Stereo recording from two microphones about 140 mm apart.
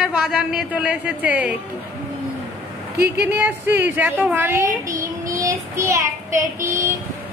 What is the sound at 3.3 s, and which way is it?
A woman's voice, 15° right (ahead or behind).